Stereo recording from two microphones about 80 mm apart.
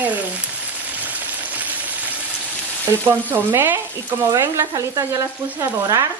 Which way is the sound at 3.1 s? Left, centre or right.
Right.